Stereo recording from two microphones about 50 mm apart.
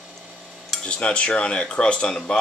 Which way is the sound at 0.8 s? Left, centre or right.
Left.